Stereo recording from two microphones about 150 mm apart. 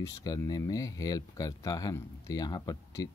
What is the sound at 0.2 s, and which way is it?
Speech, 25° left (ahead or behind).